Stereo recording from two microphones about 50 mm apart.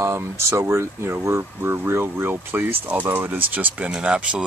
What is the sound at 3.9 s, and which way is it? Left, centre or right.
Speech, right.